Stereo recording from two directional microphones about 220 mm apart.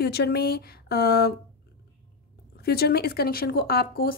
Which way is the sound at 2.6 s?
45° left (ahead or behind).